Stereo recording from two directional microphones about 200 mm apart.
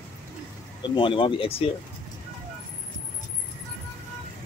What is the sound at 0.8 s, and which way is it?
Speech, 25° left (ahead or behind).